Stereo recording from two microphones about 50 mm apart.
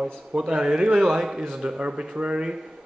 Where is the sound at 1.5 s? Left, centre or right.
Right.